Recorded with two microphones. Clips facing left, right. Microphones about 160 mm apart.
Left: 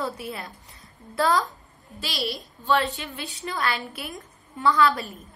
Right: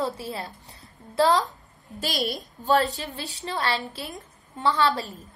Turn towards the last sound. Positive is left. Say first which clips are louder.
# left 2 dB
turn(degrees=-30)  # may be behind; listen again after turning